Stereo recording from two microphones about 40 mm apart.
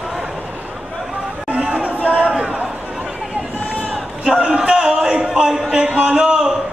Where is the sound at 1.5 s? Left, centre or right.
Right.